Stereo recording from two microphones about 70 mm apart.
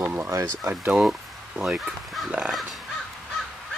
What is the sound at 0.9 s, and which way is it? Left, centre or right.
Speech, centre.